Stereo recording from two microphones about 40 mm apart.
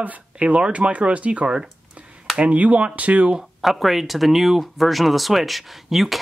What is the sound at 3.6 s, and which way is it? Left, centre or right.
Speech, centre.